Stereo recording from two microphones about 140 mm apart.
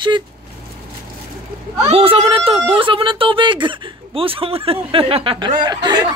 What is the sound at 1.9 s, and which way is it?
Speech, 45° right (ahead or behind).